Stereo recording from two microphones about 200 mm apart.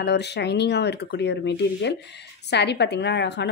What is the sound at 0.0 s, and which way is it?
Speech, 60° left (ahead or behind).